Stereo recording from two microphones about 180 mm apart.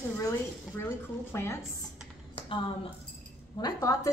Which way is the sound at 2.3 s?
30° left (ahead or behind).